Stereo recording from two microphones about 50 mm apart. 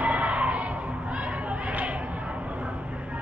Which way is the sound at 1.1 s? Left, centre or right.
Right.